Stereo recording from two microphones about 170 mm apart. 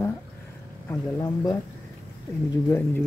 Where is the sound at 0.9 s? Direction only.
20° left (ahead or behind).